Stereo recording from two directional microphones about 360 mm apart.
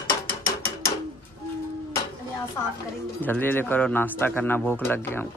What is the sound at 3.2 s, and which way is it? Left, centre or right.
A man's voice, centre.